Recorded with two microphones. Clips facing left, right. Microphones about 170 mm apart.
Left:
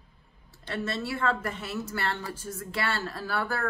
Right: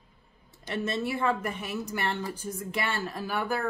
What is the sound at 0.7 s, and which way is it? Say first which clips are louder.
A woman's voice: right 2 dB; 20° right (ahead or behind).